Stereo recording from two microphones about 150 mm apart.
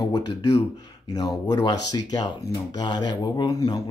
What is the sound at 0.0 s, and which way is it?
Speech, 25° left (ahead or behind).